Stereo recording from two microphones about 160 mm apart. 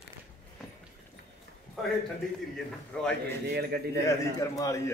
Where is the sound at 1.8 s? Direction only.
Centre (ahead or behind).